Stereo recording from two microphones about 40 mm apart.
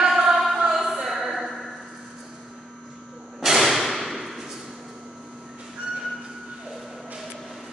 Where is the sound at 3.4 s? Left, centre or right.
Centre.